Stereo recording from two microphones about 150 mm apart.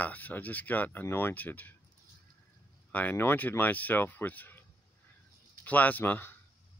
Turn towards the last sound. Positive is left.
turn(degrees=15)  # may be behind; listen again after turning